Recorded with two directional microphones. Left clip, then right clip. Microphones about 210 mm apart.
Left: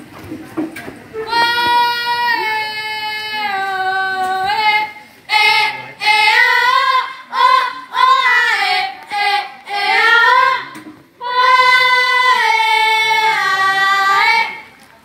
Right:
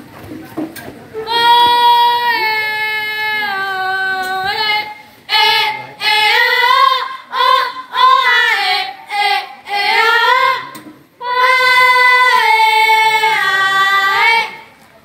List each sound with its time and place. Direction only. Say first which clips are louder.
0.6 s a sound: left 1 dB; 50° right (ahead or behind)
1.2 s child singing: right 5 dB; 5° right (ahead or behind)
13.2 s female singing: right 1 dB; centre (ahead or behind)